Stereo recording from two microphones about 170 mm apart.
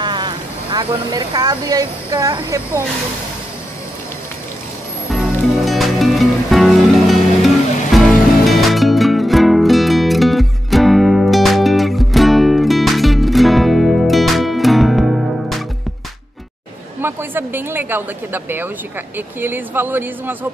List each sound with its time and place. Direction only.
0.0 s speech: 25° right (ahead or behind)
5.1 s music: centre (ahead or behind)
17.0 s a sound: 15° right (ahead or behind)
19.1 s speech: 10° right (ahead or behind)